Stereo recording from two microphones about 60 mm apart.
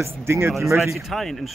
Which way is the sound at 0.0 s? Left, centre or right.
Right.